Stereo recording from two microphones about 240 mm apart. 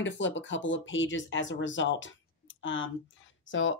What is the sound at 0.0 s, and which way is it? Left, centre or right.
Speech, left.